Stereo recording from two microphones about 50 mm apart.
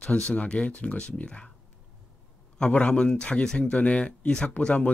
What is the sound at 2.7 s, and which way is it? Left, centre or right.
Speech, left.